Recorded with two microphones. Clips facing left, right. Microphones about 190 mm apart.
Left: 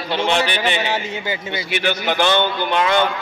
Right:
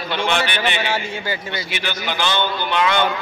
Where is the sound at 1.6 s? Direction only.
55° left (ahead or behind).